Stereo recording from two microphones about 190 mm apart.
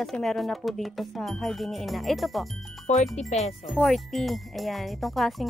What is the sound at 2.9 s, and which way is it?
Speech, 35° left (ahead or behind).